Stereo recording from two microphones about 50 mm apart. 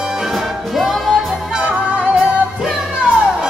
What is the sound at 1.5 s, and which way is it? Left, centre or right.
Music, right.